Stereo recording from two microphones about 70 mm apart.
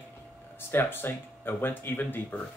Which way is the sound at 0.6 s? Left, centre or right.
Left.